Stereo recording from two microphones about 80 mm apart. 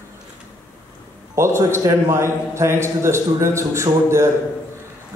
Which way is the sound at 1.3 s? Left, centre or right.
Right.